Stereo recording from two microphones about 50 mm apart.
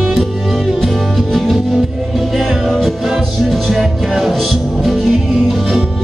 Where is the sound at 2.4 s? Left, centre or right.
Centre.